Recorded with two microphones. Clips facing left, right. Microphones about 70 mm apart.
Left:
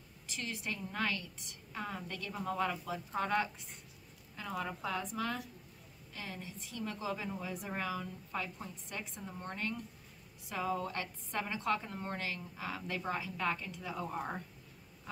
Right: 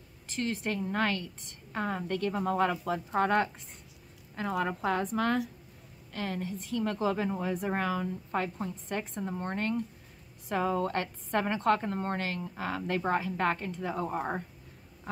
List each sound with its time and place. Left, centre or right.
0.3 s a woman's voice: right